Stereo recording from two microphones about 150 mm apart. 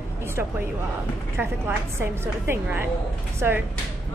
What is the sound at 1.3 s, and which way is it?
A woman's voice, 15° right (ahead or behind).